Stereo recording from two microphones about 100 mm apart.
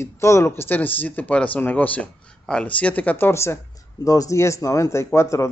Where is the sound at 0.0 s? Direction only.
30° left (ahead or behind).